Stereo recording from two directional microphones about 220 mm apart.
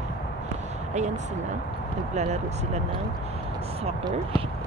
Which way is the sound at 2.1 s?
30° right (ahead or behind).